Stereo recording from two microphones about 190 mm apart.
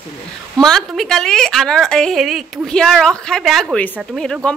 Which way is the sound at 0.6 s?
Centre (ahead or behind).